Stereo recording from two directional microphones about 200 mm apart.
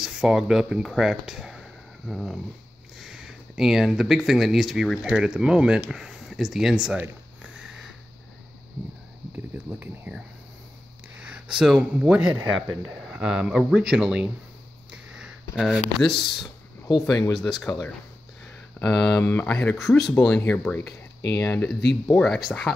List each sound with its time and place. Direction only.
0.0 s speech: centre (ahead or behind)
7.5 s sniff: centre (ahead or behind)
9.8 s speech: 5° right (ahead or behind)
14.9 s sniff: 5° right (ahead or behind)
15.5 s speech: centre (ahead or behind)
16.4 s a sound: 20° left (ahead or behind)
17.3 s speech: centre (ahead or behind)
18.8 s speech: 5° left (ahead or behind)